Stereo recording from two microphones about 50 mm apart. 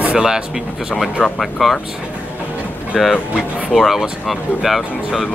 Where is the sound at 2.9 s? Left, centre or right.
Centre.